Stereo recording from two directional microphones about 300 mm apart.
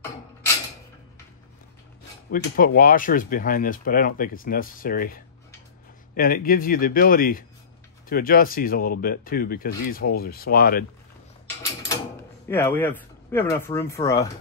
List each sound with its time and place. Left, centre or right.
2.3 s speech: left
12.4 s speech: centre